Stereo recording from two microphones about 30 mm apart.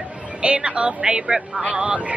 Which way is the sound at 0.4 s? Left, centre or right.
Right.